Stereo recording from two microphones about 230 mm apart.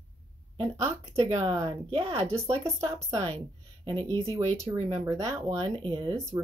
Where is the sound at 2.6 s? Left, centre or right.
Centre.